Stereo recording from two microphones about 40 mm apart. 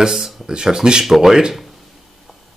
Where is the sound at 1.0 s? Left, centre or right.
Centre.